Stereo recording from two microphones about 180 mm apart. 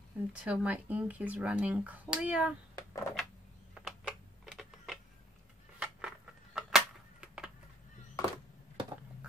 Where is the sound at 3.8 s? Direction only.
Centre (ahead or behind).